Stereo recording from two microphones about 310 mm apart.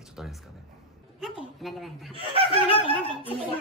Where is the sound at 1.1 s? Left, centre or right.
Centre.